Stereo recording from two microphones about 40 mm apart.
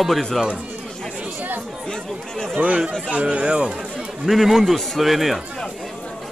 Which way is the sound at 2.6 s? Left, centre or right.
Right.